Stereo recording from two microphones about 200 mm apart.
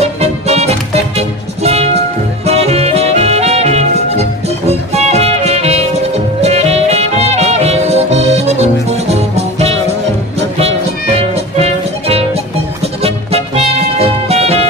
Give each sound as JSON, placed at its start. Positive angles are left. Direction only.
{"t": 0.0, "sound": "music", "side_deg": -30}
{"t": 11.1, "sound": "music", "side_deg": -30}